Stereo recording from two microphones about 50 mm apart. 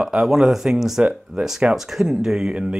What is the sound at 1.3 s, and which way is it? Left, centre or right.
Speech, right.